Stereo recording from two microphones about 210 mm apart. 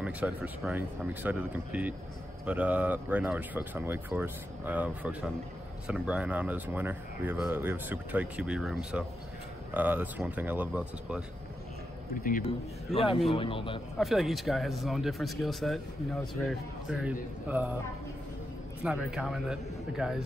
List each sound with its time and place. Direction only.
0.0 s speech: 5° right (ahead or behind)
12.2 s a man's voice: 40° left (ahead or behind)
12.4 s a man's voice: 25° left (ahead or behind)
13.9 s speech: centre (ahead or behind)
18.8 s speech: 5° right (ahead or behind)